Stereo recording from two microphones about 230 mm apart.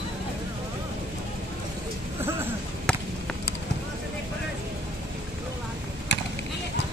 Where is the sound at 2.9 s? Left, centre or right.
Centre.